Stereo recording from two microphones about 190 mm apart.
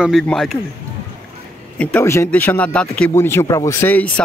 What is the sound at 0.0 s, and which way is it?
Speech, centre (ahead or behind).